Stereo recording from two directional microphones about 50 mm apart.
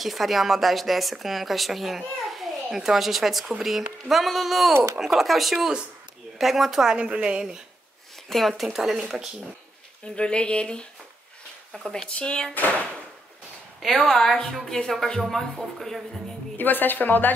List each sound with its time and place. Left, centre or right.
0.0 s speech: centre
7.0 s a woman's voice: right
8.3 s speech: centre
10.0 s speech: centre
13.8 s speech: centre
16.5 s a woman's voice: left